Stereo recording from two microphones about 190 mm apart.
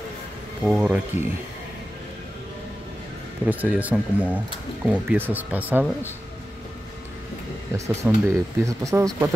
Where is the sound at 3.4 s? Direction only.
10° right (ahead or behind).